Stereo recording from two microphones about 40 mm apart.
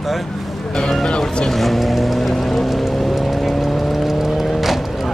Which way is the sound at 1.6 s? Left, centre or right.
Centre.